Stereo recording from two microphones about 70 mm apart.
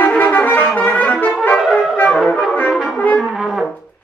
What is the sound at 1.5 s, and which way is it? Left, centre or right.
Brass instrument, centre.